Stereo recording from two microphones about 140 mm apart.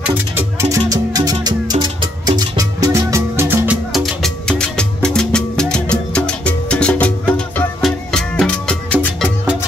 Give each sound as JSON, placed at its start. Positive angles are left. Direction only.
{"t": 0.6, "sound": "music", "side_deg": -25}
{"t": 3.9, "sound": "music", "side_deg": 0}